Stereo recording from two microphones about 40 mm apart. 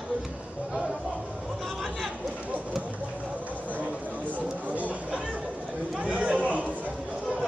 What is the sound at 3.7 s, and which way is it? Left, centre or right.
Chatter, right.